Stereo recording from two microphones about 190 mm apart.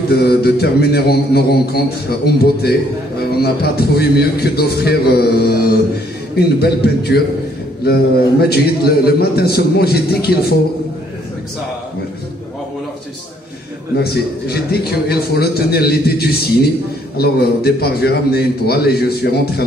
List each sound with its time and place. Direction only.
0.1 s mantra: 55° left (ahead or behind)
13.9 s mantra: 55° left (ahead or behind)